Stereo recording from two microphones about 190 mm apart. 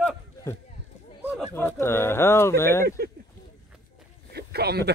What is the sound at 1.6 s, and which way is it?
Speech, 10° left (ahead or behind).